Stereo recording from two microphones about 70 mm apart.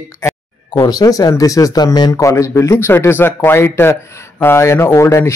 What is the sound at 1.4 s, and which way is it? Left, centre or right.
Speech, left.